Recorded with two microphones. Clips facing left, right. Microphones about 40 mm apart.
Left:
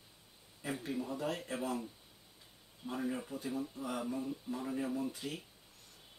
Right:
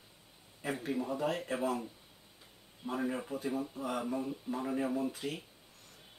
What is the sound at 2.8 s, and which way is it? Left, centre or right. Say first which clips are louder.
Speech: right 3 dB; centre.